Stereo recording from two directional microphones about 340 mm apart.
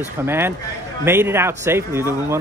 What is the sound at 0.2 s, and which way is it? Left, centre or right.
Speech, centre.